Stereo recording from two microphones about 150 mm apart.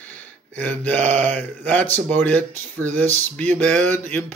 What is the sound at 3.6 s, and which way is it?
Speech, 10° left (ahead or behind).